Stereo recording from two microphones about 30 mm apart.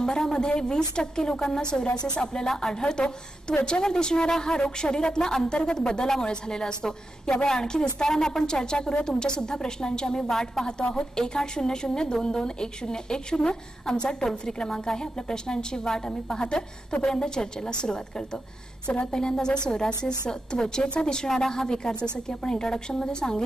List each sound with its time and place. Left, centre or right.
0.0 s a woman's voice: left
2.4 s speech: centre
2.8 s a woman's voice: left
10.8 s a woman's voice: left
16.4 s a woman's voice: left